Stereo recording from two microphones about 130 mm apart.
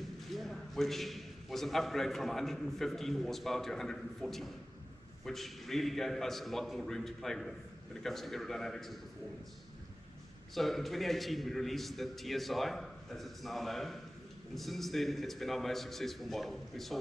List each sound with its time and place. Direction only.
0.3 s a man's voice: centre (ahead or behind)
10.5 s a man's voice: centre (ahead or behind)